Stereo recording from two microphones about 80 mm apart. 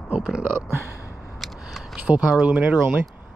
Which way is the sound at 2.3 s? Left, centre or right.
Centre.